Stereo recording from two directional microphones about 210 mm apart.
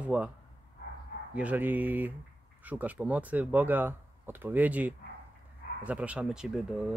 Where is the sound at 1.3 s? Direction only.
5° right (ahead or behind).